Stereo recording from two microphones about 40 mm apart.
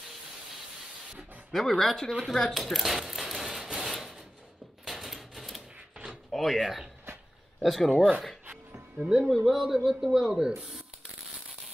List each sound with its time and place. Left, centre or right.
1.5 s speech: centre
2.5 s a sound: centre
6.3 s speech: centre
8.9 s speech: centre
9.2 s speech: centre